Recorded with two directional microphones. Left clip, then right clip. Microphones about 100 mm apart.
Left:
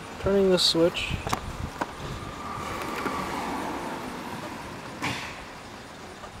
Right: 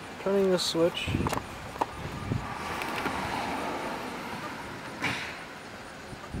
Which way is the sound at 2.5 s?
5° right (ahead or behind).